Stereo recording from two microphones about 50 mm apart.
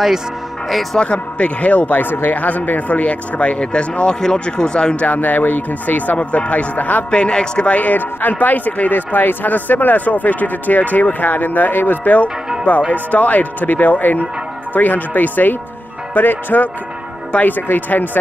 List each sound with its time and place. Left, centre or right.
0.9 s speech: left
5.0 s a man's voice: left
7.1 s a man's voice: left